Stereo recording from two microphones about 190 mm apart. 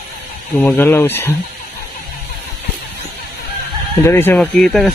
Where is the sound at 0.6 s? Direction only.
10° left (ahead or behind).